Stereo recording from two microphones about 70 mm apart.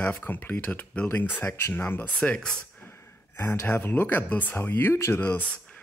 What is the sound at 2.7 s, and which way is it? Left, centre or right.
Speech, left.